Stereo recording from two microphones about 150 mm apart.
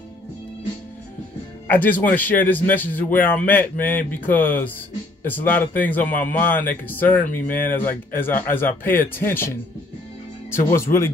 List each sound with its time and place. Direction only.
1.7 s a man's voice: 10° left (ahead or behind)